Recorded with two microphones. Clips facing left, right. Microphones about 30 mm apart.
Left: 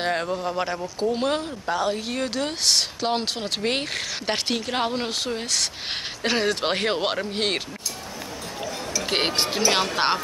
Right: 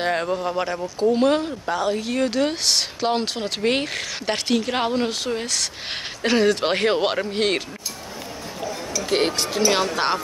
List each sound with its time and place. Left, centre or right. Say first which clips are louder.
0.0 s speech: right 2 dB; centre
9.1 s speech: right 2 dB; left
9.6 s speech: right 3 dB; centre